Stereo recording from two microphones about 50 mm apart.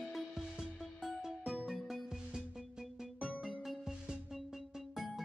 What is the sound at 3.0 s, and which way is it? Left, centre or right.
Music, centre.